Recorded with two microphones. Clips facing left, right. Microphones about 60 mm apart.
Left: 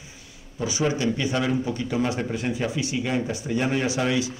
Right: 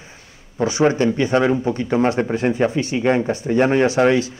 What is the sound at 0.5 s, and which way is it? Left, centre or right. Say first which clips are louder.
Speech: right 8 dB; right.